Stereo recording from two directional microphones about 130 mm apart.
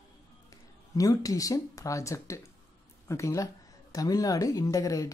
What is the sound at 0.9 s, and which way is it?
Speech, 25° left (ahead or behind).